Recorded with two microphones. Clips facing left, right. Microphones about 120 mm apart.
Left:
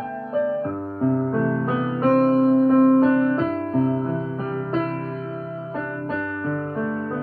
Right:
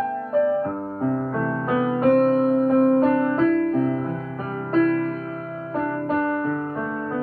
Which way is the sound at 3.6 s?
30° left (ahead or behind).